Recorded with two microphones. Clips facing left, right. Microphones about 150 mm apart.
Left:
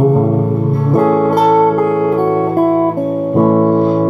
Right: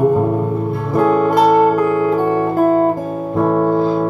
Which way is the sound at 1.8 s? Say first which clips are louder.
Left 2 dB; 45° left (ahead or behind).